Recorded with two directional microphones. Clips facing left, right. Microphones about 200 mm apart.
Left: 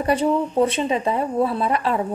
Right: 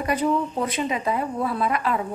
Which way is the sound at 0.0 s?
30° left (ahead or behind).